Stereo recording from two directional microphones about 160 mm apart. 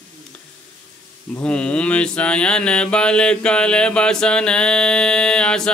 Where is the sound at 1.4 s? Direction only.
5° left (ahead or behind).